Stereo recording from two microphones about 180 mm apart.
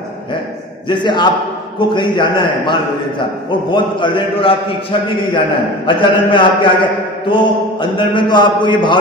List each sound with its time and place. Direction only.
0.8 s a man's voice: 25° left (ahead or behind)